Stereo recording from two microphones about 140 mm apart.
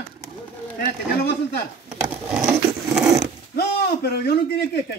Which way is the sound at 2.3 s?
5° right (ahead or behind).